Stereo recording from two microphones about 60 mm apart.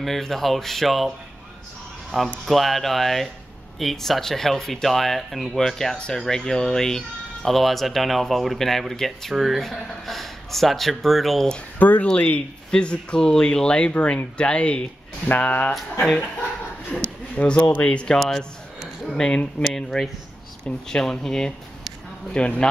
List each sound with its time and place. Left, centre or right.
0.0 s speech: centre
2.4 s speech: centre
11.8 s speech: left
15.2 s speech: left
17.4 s speech: left
18.2 s a sound: centre
19.7 s speech: centre